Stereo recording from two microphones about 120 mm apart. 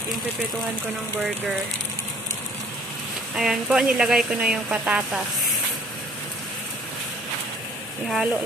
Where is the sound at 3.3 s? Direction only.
5° right (ahead or behind).